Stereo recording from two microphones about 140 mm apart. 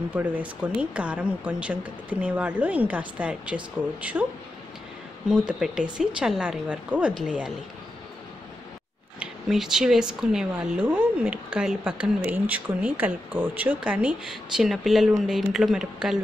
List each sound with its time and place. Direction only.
0.1 s speech: 10° right (ahead or behind)
5.5 s speech: 5° right (ahead or behind)
9.2 s speech: 5° right (ahead or behind)